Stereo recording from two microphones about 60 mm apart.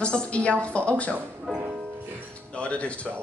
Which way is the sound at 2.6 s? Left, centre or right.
Left.